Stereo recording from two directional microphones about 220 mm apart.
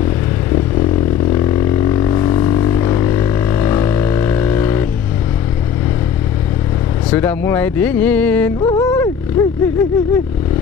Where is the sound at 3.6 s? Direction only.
20° left (ahead or behind).